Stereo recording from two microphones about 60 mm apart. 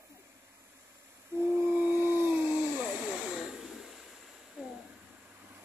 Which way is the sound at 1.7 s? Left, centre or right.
Right.